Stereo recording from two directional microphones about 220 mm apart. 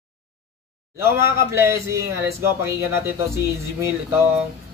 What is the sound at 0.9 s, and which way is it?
Speech, 10° right (ahead or behind).